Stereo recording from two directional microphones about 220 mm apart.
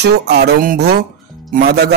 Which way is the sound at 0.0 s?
50° right (ahead or behind).